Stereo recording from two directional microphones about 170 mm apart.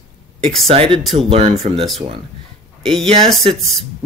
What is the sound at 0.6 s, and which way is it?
Speech, 35° right (ahead or behind).